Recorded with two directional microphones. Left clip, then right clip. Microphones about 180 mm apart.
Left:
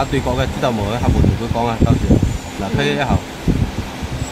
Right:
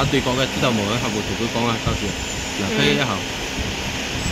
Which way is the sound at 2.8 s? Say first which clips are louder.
Left 1 dB; 30° left (ahead or behind).